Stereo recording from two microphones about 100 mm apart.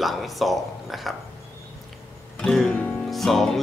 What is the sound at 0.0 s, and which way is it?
Speech, centre (ahead or behind).